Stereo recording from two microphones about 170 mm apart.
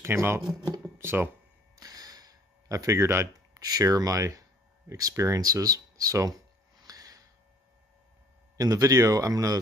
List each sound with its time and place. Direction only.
0.0 s speech: 15° right (ahead or behind)
6.8 s gasp: 20° right (ahead or behind)
8.5 s speech: 20° right (ahead or behind)